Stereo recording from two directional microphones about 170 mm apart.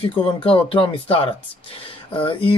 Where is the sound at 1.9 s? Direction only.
30° left (ahead or behind).